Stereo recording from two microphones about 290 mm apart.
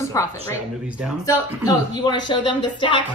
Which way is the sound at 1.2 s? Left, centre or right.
Centre.